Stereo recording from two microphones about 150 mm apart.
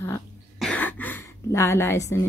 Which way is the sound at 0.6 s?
10° left (ahead or behind).